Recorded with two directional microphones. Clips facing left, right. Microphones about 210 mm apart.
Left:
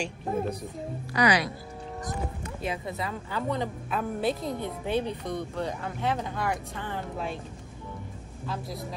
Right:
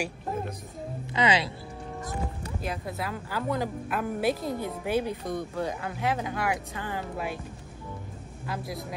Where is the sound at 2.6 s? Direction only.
Centre (ahead or behind).